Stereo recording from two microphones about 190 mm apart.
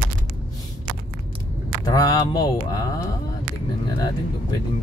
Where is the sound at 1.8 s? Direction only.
20° left (ahead or behind).